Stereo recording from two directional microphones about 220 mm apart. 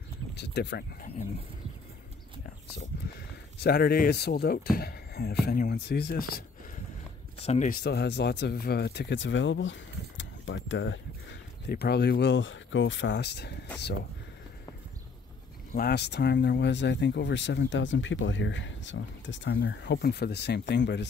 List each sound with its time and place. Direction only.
0.3 s speech: 50° left (ahead or behind)
2.9 s a sound: 45° left (ahead or behind)
3.6 s speech: 45° left (ahead or behind)
7.4 s speech: 30° left (ahead or behind)
7.8 s speech: 50° left (ahead or behind)
15.7 s speech: 45° left (ahead or behind)